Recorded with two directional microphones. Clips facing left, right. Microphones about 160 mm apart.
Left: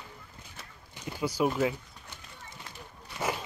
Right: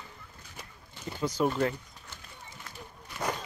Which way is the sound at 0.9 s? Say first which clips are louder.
Even; 10° left (ahead or behind).